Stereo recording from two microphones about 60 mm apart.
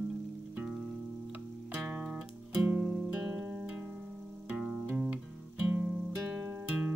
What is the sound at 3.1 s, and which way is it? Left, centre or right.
Music, centre.